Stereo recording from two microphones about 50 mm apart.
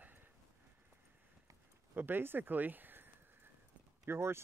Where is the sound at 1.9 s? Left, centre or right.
Right.